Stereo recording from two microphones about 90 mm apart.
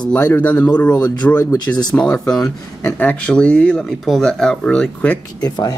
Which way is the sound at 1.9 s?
10° left (ahead or behind).